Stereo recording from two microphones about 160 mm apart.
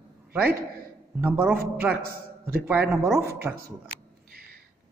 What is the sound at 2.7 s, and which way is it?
Speech, 15° right (ahead or behind).